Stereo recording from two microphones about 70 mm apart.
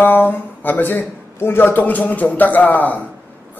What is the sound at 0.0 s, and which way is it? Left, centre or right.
Speech, left.